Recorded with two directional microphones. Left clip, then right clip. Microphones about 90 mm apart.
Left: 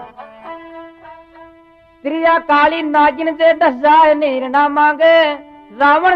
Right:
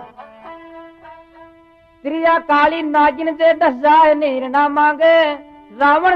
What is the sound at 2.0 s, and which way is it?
Speech, 50° left (ahead or behind).